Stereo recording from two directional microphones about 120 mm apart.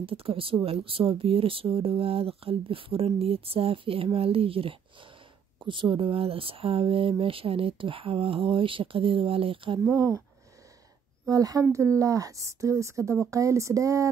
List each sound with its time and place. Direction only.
0.0 s speech: 50° right (ahead or behind)
9.8 s speech: 25° right (ahead or behind)
11.2 s speech: 30° right (ahead or behind)